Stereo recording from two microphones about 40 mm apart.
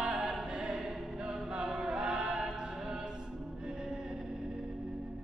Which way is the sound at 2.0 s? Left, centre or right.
Right.